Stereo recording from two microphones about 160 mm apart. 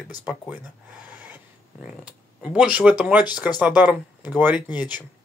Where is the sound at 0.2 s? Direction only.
10° right (ahead or behind).